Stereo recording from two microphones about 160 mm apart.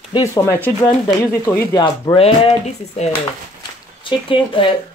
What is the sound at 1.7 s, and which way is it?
Speech, 25° left (ahead or behind).